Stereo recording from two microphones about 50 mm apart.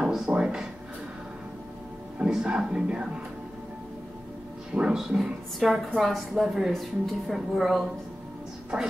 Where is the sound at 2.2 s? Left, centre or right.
Right.